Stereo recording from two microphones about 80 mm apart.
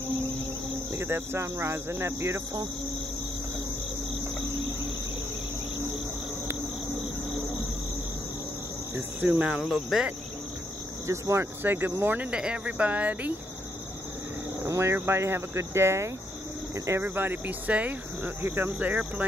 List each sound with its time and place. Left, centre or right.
1.0 s speech: right
9.3 s speech: centre
9.6 s cricket: centre
11.1 s speech: right
11.6 s speech: right
12.3 s speech: centre
14.7 s speech: right
17.0 s speech: right